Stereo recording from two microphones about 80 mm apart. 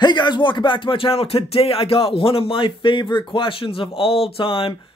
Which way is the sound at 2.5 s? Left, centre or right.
Left.